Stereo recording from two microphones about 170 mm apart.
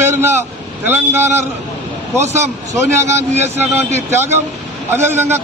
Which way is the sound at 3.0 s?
15° right (ahead or behind).